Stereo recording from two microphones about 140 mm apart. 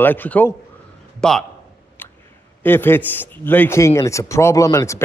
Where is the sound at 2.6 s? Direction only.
15° left (ahead or behind).